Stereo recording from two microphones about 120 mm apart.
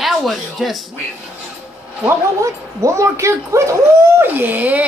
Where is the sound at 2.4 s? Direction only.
25° right (ahead or behind).